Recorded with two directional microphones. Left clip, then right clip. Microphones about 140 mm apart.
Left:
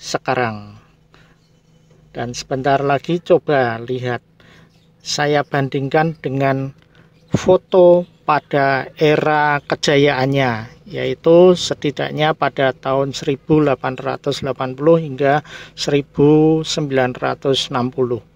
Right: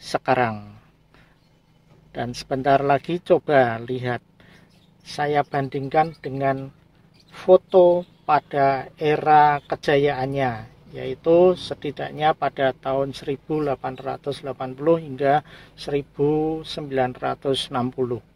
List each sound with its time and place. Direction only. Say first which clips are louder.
0.0 s speech: left 2 dB; 20° left (ahead or behind)
2.1 s speech: left 4 dB; 20° left (ahead or behind)
5.0 s speech: left 5 dB; 35° left (ahead or behind)
13.5 s speech: left 9 dB; 55° left (ahead or behind); by 18.2 s 30° left (ahead or behind)